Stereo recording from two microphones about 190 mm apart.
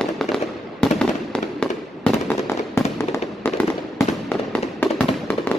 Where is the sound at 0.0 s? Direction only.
Centre (ahead or behind).